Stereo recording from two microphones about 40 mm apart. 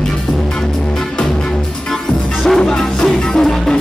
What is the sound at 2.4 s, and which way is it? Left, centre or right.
Music, centre.